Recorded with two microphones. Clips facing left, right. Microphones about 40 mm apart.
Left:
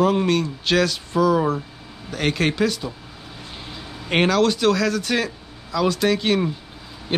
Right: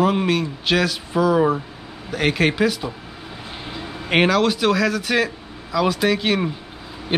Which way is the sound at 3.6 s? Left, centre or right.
Right.